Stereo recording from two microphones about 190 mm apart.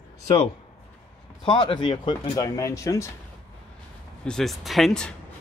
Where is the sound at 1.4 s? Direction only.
25° left (ahead or behind).